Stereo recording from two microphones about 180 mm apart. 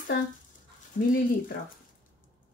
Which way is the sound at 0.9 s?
55° left (ahead or behind).